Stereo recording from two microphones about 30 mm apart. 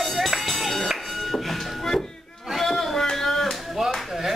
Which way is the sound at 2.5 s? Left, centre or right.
Centre.